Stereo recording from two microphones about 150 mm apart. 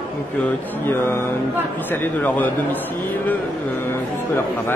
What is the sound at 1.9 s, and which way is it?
Speech, 10° left (ahead or behind).